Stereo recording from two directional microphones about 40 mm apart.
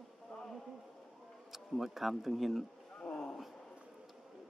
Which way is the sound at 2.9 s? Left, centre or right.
Left.